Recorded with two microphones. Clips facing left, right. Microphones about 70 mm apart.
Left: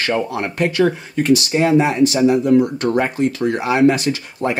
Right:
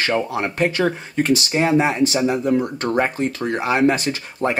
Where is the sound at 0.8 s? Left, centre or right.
Right.